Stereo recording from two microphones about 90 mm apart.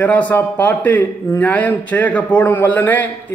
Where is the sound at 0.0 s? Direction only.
15° left (ahead or behind).